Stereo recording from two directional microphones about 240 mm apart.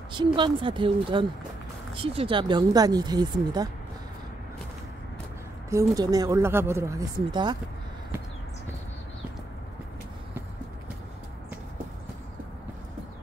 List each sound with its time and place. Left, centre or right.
0.1 s a woman's voice: centre
5.7 s speech: centre